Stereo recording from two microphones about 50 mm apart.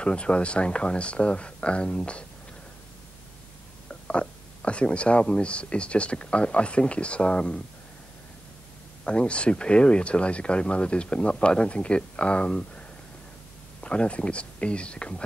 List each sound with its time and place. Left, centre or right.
0.0 s speech: left
4.1 s speech: left
9.0 s speech: left
13.8 s speech: left